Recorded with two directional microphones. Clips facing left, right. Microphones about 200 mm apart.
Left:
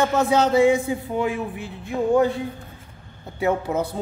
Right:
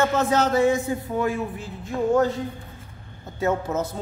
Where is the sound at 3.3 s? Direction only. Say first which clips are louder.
Left 2 dB; 15° left (ahead or behind).